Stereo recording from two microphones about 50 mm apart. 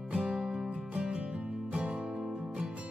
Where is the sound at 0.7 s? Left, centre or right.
Centre.